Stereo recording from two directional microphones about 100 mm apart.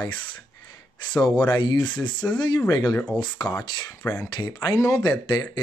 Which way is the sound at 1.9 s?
10° left (ahead or behind).